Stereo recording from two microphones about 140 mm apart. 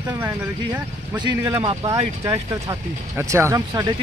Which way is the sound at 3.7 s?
30° right (ahead or behind).